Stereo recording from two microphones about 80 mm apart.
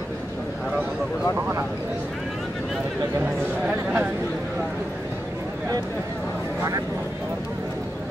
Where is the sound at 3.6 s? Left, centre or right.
Right.